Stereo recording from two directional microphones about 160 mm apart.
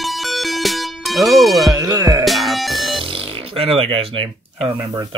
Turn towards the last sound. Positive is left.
turn(degrees=-25)  # may be behind; listen again after turning